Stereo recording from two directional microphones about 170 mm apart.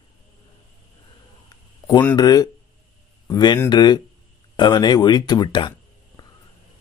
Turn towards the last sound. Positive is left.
turn(degrees=25)  # may be behind; listen again after turning